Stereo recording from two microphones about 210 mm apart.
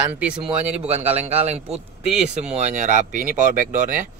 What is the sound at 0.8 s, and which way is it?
Speech, 30° right (ahead or behind).